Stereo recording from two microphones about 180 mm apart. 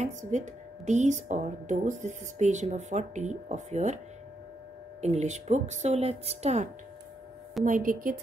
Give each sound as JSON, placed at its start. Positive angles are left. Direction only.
{"t": 0.0, "sound": "a woman's voice", "side_deg": -40}
{"t": 5.0, "sound": "speech", "side_deg": -40}
{"t": 7.6, "sound": "a woman's voice", "side_deg": -50}